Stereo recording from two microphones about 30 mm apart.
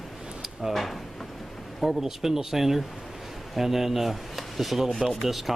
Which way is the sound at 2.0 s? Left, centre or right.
Centre.